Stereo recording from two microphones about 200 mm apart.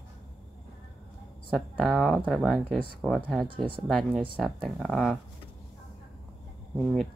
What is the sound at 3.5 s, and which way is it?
Speech, 25° right (ahead or behind).